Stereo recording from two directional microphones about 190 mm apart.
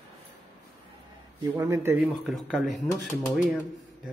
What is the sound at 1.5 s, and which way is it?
Speech, 10° right (ahead or behind).